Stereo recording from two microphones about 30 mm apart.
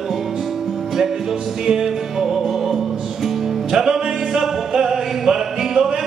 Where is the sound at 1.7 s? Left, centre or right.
Centre.